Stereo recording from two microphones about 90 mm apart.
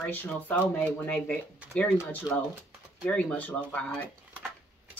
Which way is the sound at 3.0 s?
20° left (ahead or behind).